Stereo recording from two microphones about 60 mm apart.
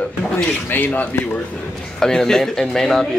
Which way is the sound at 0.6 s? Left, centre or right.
Left.